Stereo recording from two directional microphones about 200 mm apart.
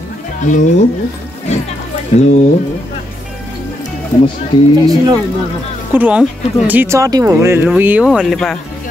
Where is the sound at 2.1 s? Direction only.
30° left (ahead or behind).